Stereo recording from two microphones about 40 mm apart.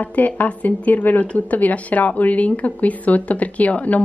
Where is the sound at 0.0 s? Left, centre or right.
Left.